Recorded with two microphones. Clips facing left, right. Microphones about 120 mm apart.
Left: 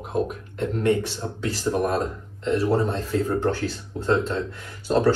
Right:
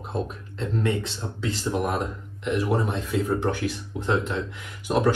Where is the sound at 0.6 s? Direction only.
25° right (ahead or behind).